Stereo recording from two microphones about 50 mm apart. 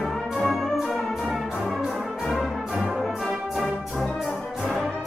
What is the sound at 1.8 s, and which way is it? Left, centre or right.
Brass instrument, centre.